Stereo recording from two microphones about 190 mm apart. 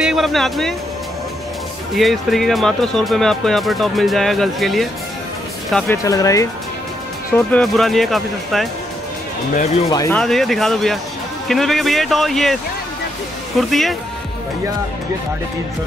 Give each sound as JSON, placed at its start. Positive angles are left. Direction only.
{"t": 0.0, "sound": "speech", "side_deg": 0}
{"t": 2.0, "sound": "speech", "side_deg": 0}
{"t": 5.9, "sound": "speech", "side_deg": 15}
{"t": 7.3, "sound": "speech", "side_deg": 5}
{"t": 9.8, "sound": "speech", "side_deg": 20}
{"t": 10.1, "sound": "speech", "side_deg": 0}
{"t": 13.6, "sound": "speech", "side_deg": 0}